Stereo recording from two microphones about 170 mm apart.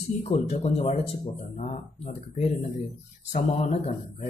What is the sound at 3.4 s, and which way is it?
Speech, 40° left (ahead or behind).